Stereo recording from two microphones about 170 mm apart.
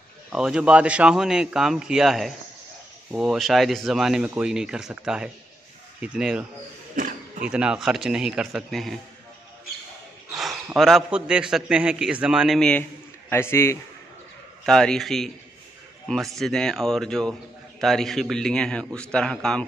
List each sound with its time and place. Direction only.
0.3 s a man's voice: 5° right (ahead or behind)
7.0 s a sound: 50° right (ahead or behind)
7.4 s a man's voice: 5° right (ahead or behind)
10.3 s a man's voice: 5° right (ahead or behind)
13.3 s a man's voice: 15° left (ahead or behind)
14.6 s a man's voice: 5° left (ahead or behind)